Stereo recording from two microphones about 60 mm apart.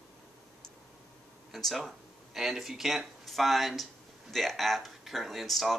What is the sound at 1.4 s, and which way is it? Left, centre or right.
Speech, centre.